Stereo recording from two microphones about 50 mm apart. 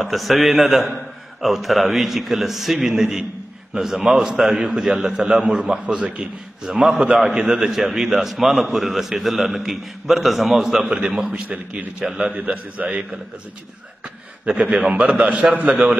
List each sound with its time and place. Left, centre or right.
0.0 s a man's voice: centre; by 13.0 s right
14.0 s a man's voice: right